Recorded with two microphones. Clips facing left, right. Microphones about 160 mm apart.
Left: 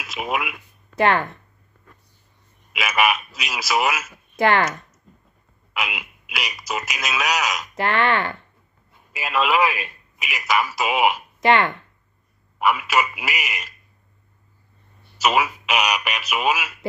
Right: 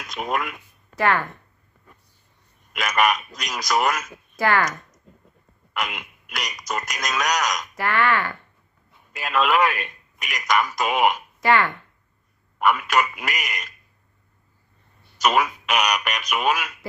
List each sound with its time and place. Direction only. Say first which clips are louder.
0.0 s speech: even; 5° left (ahead or behind)
0.9 s speech: left 3 dB; 20° left (ahead or behind)
2.7 s a man's voice: even; 5° left (ahead or behind)
4.4 s speech: left 3 dB; 25° left (ahead or behind)
5.7 s speech: even; 5° left (ahead or behind)
7.7 s speech: left 2 dB; 25° left (ahead or behind)
9.1 s a man's voice: even; 5° left (ahead or behind)
11.4 s speech: left 2 dB; 20° left (ahead or behind)
12.5 s a man's voice: even; 5° left (ahead or behind)
15.1 s a man's voice: even; 5° left (ahead or behind)